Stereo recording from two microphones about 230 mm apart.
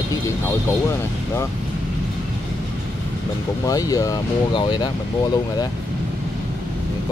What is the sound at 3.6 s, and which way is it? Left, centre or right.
Speech, centre.